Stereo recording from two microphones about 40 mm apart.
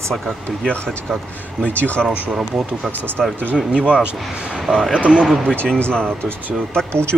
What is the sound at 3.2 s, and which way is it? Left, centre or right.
Speech, centre.